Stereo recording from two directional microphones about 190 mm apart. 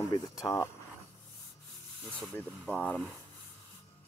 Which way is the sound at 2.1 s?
5° left (ahead or behind).